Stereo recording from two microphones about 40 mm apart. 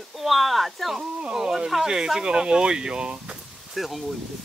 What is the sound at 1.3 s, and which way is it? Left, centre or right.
Speech, centre.